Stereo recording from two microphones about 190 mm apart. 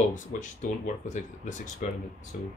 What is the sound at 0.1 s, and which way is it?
Speech, 45° left (ahead or behind).